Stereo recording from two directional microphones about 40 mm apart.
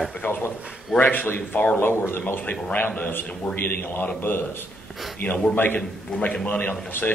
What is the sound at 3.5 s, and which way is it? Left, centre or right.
Speech, left.